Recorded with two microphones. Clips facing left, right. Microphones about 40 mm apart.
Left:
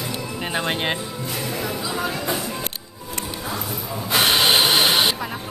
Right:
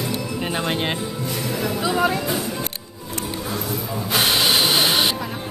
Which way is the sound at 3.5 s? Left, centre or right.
Centre.